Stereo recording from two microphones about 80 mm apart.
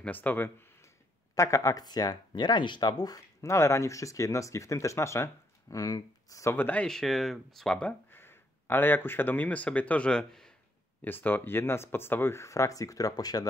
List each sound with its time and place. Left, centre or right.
0.0 s speech: left
1.3 s speech: left
3.3 s speech: left
6.4 s speech: left
6.9 s speech: centre
8.1 s speech: left; by 10.5 s centre
11.1 s speech: left